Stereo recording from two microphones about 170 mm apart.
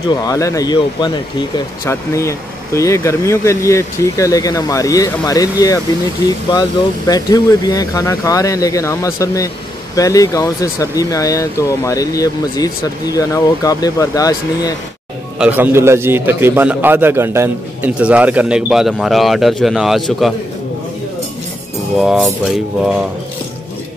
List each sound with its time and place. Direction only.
0.1 s speech: 20° left (ahead or behind)
7.1 s speech: 20° left (ahead or behind)
15.3 s a man's voice: 10° right (ahead or behind)
22.0 s music: centre (ahead or behind)